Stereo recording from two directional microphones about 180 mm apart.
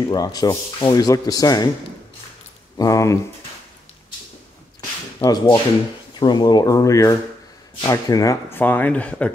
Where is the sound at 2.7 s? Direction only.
20° left (ahead or behind).